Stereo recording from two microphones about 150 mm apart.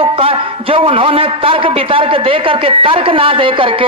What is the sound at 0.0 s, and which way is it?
A man's voice, 35° right (ahead or behind).